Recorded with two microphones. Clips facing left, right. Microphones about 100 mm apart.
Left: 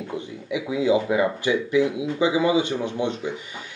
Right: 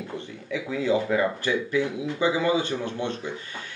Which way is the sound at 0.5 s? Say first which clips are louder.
Left 4 dB; 15° left (ahead or behind).